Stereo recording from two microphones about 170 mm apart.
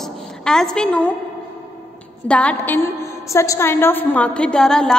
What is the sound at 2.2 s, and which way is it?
A woman's voice, 5° left (ahead or behind).